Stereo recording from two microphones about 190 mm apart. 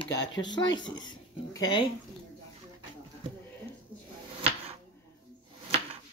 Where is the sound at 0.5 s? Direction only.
20° left (ahead or behind).